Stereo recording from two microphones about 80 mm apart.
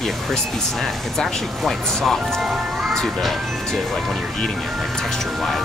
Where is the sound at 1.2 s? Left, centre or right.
Centre.